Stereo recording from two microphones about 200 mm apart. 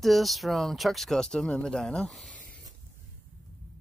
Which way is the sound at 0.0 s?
Centre (ahead or behind).